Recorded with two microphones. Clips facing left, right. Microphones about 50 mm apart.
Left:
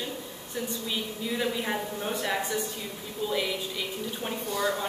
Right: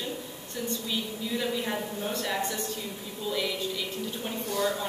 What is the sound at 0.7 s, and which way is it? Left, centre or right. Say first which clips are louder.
Speech: right 3 dB; centre.